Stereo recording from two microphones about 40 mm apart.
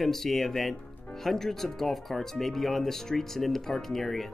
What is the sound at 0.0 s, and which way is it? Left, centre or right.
Speech, centre.